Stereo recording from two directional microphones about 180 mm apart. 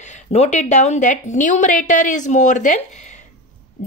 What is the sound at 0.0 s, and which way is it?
Speech, 40° left (ahead or behind).